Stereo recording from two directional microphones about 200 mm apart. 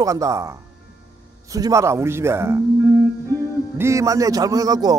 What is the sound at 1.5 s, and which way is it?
A man's voice, 15° right (ahead or behind).